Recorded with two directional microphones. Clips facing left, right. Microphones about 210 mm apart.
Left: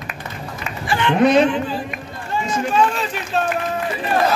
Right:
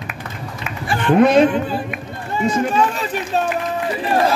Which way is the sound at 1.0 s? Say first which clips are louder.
Right 2 dB; 45° right (ahead or behind).